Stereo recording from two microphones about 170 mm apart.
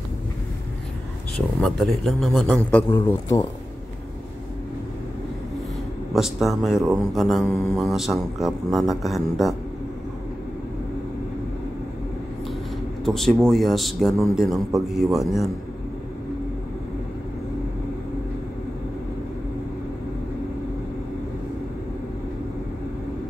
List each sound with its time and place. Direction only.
1.3 s speech: centre (ahead or behind)
2.9 s a man's voice: 15° left (ahead or behind)
6.1 s speech: centre (ahead or behind)
13.0 s speech: centre (ahead or behind)